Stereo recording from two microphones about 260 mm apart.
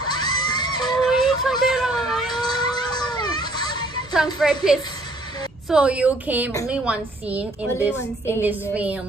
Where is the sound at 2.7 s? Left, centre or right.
Centre.